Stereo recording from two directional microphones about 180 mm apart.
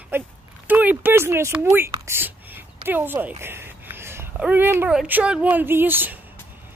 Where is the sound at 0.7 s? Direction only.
10° right (ahead or behind).